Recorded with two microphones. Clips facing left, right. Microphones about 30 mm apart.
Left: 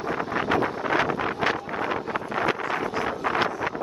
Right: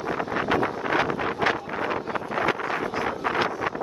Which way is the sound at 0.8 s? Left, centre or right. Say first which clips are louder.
Left 1 dB; left.